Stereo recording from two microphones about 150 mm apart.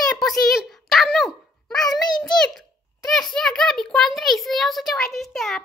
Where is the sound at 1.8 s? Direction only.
25° left (ahead or behind).